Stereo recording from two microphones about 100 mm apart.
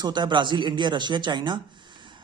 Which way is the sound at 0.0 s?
50° right (ahead or behind).